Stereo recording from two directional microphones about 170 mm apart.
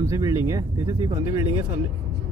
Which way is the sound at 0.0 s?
20° right (ahead or behind).